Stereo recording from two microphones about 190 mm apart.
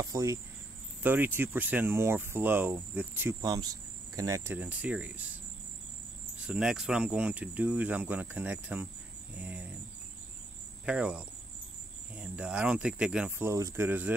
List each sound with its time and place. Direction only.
0.0 s speech: 15° right (ahead or behind)
3.3 s speech: 20° right (ahead or behind)
6.4 s speech: 5° right (ahead or behind)
9.4 s cricket: 10° right (ahead or behind)
10.9 s cricket: 5° right (ahead or behind)
12.2 s speech: 5° right (ahead or behind)